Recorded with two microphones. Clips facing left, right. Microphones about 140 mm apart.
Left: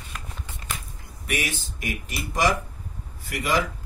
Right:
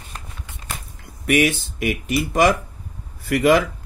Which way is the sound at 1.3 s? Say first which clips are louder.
Right 11 dB; 65° right (ahead or behind).